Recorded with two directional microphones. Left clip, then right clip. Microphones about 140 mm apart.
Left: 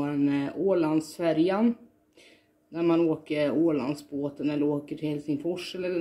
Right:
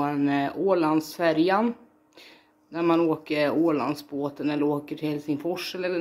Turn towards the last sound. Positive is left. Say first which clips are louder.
# right 2 dB
turn(degrees=15)  # may be behind; listen again after turning